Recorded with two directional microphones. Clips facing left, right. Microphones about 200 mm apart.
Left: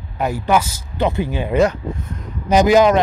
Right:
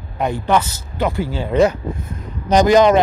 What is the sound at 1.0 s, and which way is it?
Speech, 20° left (ahead or behind).